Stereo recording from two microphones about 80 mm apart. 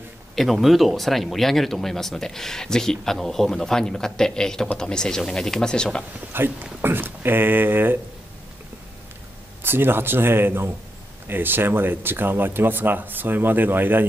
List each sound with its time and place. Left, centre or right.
0.4 s speech: centre
6.3 s speech: right
9.6 s speech: right